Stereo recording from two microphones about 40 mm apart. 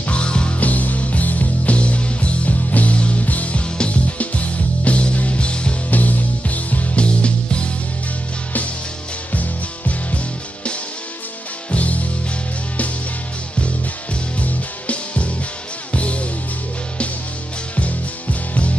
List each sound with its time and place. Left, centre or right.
0.0 s music: left
0.6 s music: left
5.9 s music: left
9.3 s music: left
14.4 s music: left